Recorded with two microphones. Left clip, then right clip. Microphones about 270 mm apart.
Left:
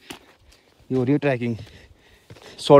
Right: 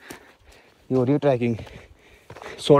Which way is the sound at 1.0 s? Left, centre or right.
Left.